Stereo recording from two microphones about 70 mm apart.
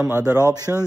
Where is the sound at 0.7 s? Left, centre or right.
Right.